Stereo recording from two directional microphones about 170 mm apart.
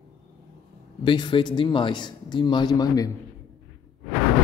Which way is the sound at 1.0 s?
25° left (ahead or behind).